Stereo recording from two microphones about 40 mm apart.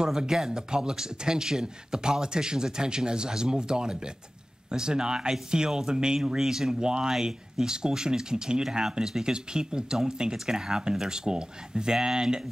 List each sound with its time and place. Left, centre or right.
0.0 s a man's voice: centre